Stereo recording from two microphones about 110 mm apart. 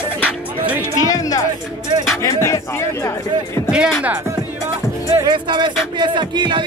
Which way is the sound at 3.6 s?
5° right (ahead or behind).